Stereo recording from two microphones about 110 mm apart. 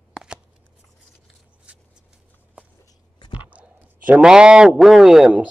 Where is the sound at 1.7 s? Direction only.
10° right (ahead or behind).